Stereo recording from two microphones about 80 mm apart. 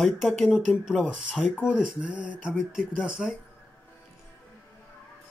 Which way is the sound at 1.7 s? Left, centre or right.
Centre.